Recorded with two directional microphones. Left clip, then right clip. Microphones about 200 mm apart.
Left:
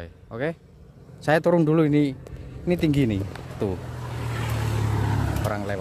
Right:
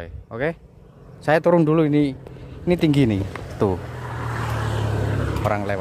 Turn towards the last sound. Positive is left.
turn(degrees=-15)  # may be behind; listen again after turning